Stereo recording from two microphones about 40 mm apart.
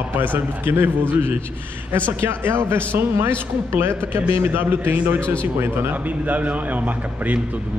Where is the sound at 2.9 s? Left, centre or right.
Right.